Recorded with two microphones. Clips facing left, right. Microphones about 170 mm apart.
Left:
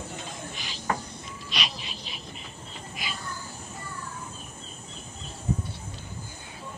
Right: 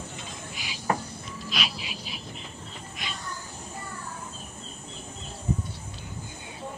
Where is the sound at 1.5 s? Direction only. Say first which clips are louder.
Right 1 dB; 5° right (ahead or behind).